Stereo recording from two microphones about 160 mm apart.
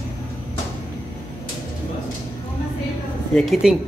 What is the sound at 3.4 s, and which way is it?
Speech, centre (ahead or behind).